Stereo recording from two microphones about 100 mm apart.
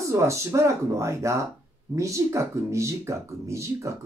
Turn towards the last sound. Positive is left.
turn(degrees=-30)  # may be behind; listen again after turning